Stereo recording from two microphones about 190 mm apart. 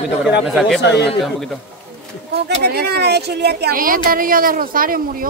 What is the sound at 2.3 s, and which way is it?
Speech, 60° right (ahead or behind).